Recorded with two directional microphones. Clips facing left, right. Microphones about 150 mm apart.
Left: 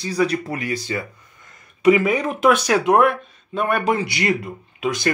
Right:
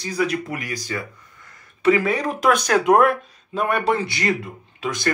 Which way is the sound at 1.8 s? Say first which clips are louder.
Left 3 dB; 10° left (ahead or behind).